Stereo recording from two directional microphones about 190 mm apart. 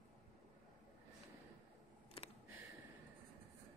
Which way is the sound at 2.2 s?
30° left (ahead or behind).